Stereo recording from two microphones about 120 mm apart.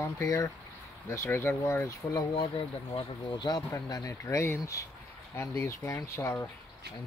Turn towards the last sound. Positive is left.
turn(degrees=20)  # may be behind; listen again after turning